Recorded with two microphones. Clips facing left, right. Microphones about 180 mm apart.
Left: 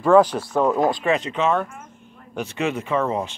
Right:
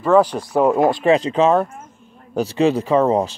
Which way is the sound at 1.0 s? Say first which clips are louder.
Right 6 dB; 30° right (ahead or behind).